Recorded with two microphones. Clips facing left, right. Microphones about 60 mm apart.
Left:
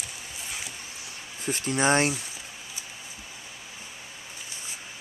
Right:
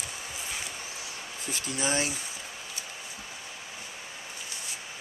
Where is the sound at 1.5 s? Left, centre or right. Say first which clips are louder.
Left 7 dB; left.